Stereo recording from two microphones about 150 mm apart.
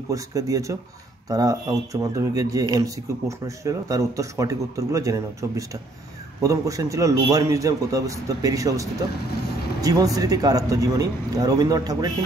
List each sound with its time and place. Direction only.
0.1 s speech: 20° right (ahead or behind)